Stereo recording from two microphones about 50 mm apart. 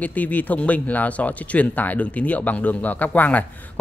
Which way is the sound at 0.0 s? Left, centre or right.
Left.